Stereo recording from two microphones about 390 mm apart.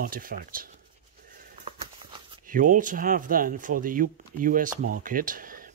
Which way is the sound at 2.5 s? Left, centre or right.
Centre.